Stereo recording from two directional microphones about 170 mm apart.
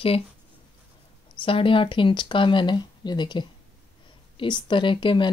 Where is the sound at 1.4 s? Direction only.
30° left (ahead or behind).